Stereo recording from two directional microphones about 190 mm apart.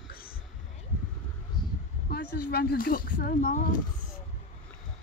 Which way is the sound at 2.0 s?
55° left (ahead or behind).